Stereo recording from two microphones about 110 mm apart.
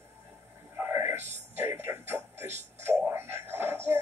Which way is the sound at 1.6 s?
20° right (ahead or behind).